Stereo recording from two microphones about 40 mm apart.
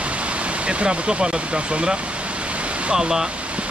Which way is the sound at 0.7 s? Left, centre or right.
Right.